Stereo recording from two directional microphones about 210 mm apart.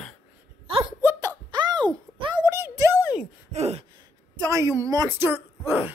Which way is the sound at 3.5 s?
30° right (ahead or behind).